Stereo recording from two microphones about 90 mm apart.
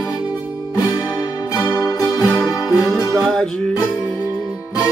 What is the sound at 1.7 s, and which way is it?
Music, 35° left (ahead or behind).